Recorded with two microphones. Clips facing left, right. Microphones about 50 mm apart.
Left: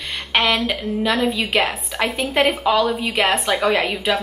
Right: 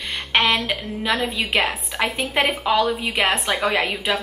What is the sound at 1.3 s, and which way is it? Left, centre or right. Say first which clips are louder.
Speech: left 2 dB; centre.